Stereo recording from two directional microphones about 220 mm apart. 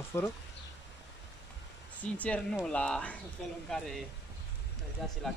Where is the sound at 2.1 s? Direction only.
5° left (ahead or behind).